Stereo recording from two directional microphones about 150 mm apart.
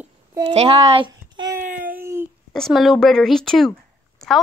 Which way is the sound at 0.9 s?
30° right (ahead or behind).